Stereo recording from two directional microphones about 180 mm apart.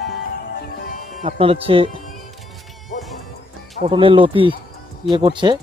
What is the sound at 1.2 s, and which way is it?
Speech, 35° right (ahead or behind).